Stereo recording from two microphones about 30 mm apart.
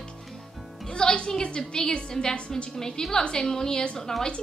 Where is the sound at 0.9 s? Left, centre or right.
Left.